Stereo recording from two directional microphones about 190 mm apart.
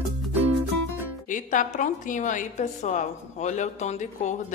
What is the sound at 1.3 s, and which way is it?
A man's voice, 40° left (ahead or behind).